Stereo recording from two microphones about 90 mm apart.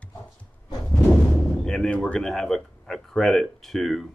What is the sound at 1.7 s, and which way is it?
A man's voice, 10° left (ahead or behind).